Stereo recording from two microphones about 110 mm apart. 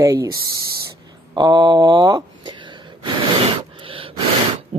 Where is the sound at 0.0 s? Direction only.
35° right (ahead or behind).